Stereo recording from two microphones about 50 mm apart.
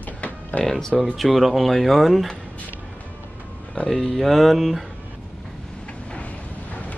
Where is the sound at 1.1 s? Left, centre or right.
Centre.